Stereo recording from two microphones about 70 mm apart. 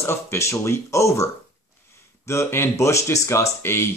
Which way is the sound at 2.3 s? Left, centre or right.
Left.